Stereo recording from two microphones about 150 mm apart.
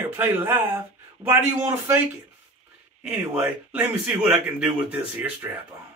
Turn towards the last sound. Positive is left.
turn(degrees=-10)  # may be behind; listen again after turning